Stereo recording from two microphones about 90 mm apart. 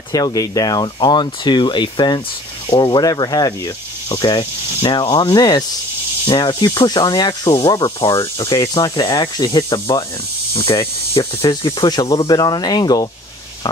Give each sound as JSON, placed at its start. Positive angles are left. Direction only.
{"t": 0.1, "sound": "speech", "side_deg": 45}
{"t": 5.3, "sound": "speech", "side_deg": 45}
{"t": 8.0, "sound": "cricket", "side_deg": 75}
{"t": 8.8, "sound": "speech", "side_deg": 50}
{"t": 10.7, "sound": "cricket", "side_deg": 35}
{"t": 12.2, "sound": "speech", "side_deg": 50}